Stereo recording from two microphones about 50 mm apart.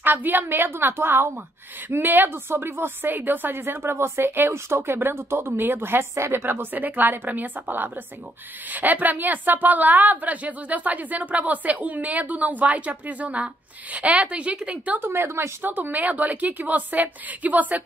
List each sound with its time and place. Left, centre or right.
0.0 s a woman's voice: right
15.2 s speech: right
15.6 s a woman's voice: right